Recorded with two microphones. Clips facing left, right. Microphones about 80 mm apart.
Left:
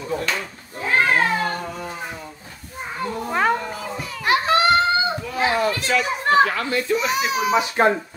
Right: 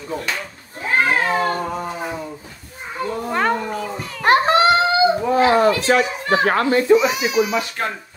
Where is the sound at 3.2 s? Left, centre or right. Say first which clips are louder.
Even; centre.